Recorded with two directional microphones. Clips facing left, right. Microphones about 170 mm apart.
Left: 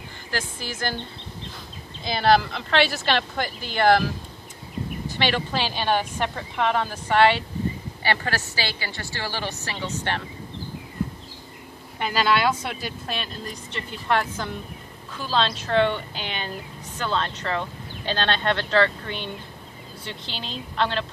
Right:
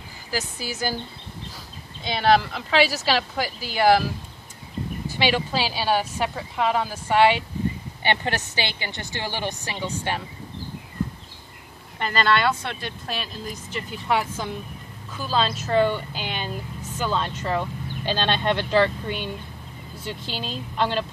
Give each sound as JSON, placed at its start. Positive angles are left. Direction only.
{"t": 0.3, "sound": "speech", "side_deg": -5}
{"t": 2.0, "sound": "speech", "side_deg": 0}
{"t": 5.0, "sound": "speech", "side_deg": -10}
{"t": 8.0, "sound": "speech", "side_deg": -20}
{"t": 12.0, "sound": "speech", "side_deg": 5}